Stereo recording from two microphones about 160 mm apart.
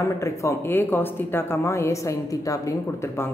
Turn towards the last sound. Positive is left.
turn(degrees=15)  # may be behind; listen again after turning